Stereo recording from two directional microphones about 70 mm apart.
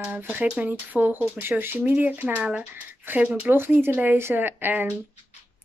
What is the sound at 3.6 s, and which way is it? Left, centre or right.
Speech, right.